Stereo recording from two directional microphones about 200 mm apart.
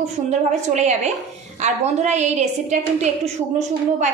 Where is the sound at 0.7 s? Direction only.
35° right (ahead or behind).